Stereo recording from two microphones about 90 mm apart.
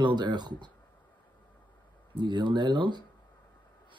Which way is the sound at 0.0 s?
55° right (ahead or behind).